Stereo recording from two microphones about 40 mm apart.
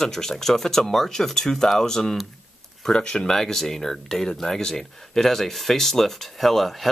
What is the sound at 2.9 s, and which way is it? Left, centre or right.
Speech, left.